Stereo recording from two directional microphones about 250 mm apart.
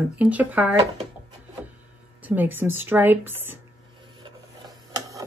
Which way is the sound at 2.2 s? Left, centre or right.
Centre.